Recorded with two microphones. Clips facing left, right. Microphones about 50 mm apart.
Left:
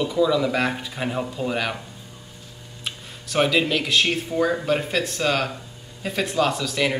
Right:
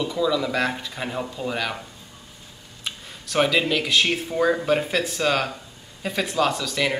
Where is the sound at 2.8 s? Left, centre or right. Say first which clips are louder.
Even; centre.